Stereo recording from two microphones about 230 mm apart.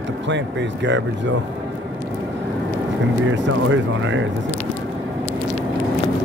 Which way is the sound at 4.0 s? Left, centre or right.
Right.